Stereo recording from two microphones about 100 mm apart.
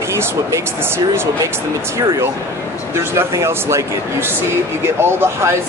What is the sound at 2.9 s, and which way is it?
Speech, 30° right (ahead or behind).